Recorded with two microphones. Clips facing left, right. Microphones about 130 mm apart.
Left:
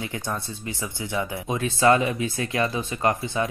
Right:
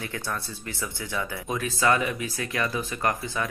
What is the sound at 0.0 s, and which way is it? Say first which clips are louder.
Speech: left 2 dB; 20° left (ahead or behind).